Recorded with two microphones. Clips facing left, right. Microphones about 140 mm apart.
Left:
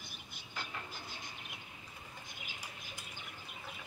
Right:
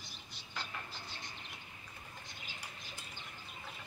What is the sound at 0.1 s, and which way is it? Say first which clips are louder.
Bird: right 2 dB; 50° left (ahead or behind).